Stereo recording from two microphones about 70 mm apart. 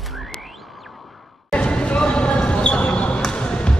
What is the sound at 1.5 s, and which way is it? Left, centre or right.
Basketball bounce, centre.